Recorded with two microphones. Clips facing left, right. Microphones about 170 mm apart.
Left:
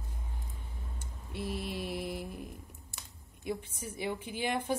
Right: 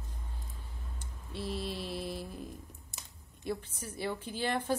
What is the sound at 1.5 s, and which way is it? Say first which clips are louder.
A woman's voice: even; 15° left (ahead or behind).